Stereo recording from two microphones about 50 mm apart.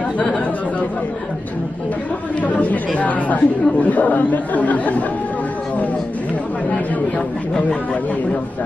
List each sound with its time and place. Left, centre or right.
0.2 s speech: left
2.4 s speech: left